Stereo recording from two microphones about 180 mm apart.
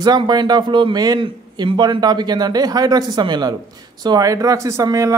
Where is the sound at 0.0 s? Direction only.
25° right (ahead or behind).